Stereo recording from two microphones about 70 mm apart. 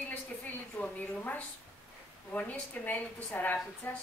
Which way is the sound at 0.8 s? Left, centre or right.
Left.